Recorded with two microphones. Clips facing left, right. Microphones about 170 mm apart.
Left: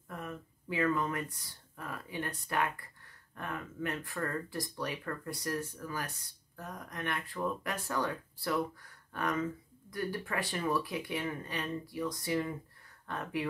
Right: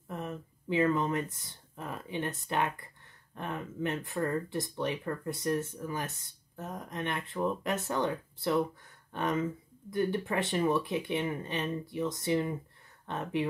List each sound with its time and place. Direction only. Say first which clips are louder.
0.1 s speech: right 4 dB; 25° right (ahead or behind)